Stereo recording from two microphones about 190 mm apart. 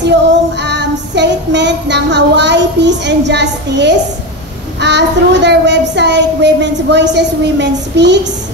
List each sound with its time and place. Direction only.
0.6 s child singing: 65° right (ahead or behind)
4.7 s a child's voice: 65° right (ahead or behind)